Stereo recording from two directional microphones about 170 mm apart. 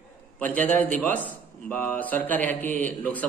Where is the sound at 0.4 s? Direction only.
10° left (ahead or behind).